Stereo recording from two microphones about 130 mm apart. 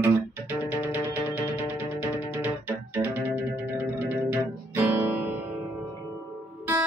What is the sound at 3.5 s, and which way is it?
Music, 15° right (ahead or behind).